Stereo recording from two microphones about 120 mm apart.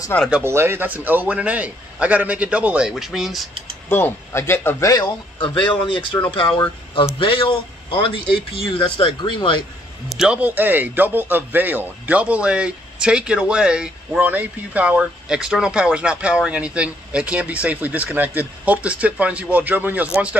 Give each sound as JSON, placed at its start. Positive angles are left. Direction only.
{"t": 0.4, "sound": "a man's voice", "side_deg": -20}
{"t": 3.9, "sound": "speech", "side_deg": 20}
{"t": 5.0, "sound": "speech", "side_deg": 40}
{"t": 10.0, "sound": "a man's voice", "side_deg": -5}